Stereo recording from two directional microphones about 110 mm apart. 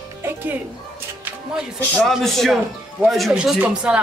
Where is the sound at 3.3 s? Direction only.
10° right (ahead or behind).